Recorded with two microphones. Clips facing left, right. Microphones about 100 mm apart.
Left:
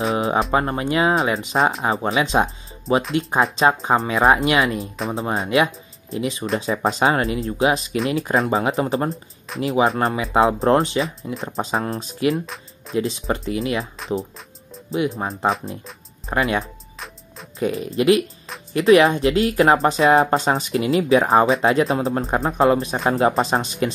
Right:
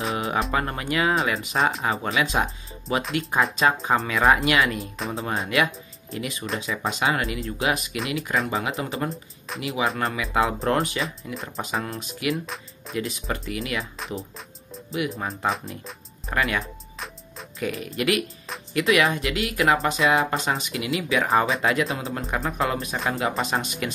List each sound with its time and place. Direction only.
0.1 s music: 30° left (ahead or behind)
0.5 s speech: 25° left (ahead or behind)
6.6 s speech: 35° left (ahead or behind)
14.9 s speech: 30° left (ahead or behind)
15.4 s speech: centre (ahead or behind)
16.3 s speech: 30° left (ahead or behind)
16.6 s music: centre (ahead or behind)
17.6 s speech: 30° left (ahead or behind)